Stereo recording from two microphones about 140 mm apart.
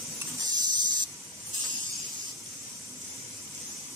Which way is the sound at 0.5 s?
30° right (ahead or behind).